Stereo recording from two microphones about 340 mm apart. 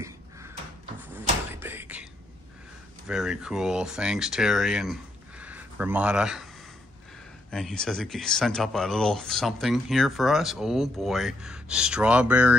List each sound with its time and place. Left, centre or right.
1.6 s a sound: centre
3.1 s speech: centre
7.5 s speech: centre